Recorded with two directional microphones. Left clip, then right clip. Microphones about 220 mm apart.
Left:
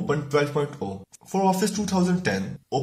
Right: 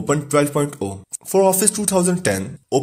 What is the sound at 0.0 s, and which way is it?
Speech, 45° right (ahead or behind).